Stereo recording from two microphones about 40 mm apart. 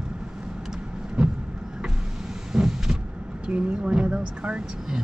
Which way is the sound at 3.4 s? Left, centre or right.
Right.